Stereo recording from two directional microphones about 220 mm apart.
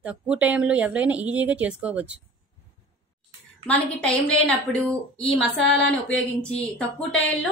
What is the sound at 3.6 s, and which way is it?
A woman's voice, 5° left (ahead or behind).